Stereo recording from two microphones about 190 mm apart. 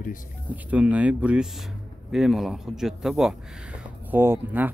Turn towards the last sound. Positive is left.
turn(degrees=-10)  # may be behind; listen again after turning